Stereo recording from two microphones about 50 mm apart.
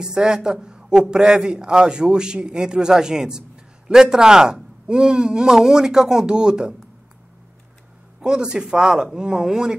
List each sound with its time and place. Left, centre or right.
0.0 s a man's voice: centre
8.2 s a man's voice: centre